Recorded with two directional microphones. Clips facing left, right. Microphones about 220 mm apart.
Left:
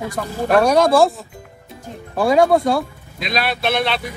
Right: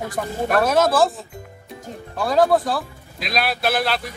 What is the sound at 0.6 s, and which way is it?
Speech, centre (ahead or behind).